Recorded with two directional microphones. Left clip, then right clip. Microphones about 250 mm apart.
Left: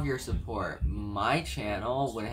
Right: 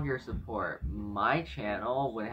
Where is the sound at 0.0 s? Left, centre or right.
Centre.